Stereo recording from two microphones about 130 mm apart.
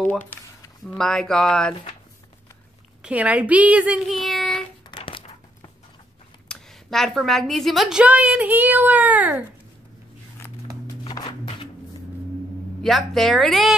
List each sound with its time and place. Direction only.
0.8 s a woman's voice: 5° left (ahead or behind)
3.0 s a woman's voice: 10° right (ahead or behind)
4.9 s dog: 40° left (ahead or behind)
6.5 s a woman's voice: 5° left (ahead or behind)
11.1 s music: 30° left (ahead or behind)
12.8 s a woman's voice: centre (ahead or behind)